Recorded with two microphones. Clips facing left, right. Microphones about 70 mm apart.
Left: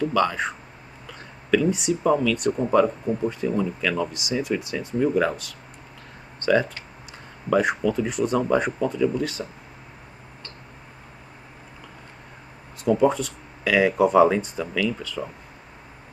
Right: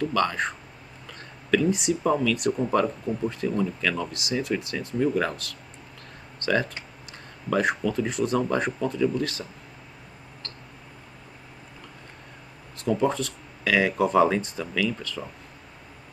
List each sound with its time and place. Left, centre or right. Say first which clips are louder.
0.0 s speech: left 2 dB; centre
12.8 s speech: left 4 dB; centre